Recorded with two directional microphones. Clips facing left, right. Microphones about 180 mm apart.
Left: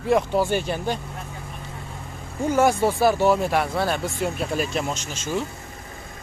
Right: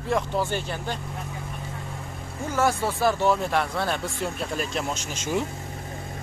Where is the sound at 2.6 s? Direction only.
15° left (ahead or behind).